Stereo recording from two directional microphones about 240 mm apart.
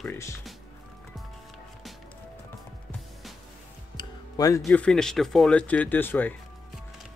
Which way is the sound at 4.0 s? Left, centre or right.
Centre.